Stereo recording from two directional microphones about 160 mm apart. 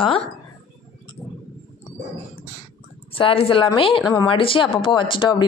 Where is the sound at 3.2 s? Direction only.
35° left (ahead or behind).